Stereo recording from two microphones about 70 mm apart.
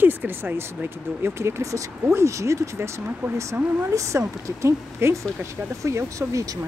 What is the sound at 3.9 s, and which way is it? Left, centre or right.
Speech, right.